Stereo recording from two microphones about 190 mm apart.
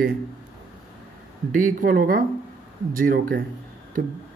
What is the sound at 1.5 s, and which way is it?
Speech, 45° right (ahead or behind).